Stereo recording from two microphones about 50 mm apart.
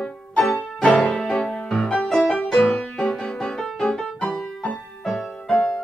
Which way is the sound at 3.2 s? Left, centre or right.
Centre.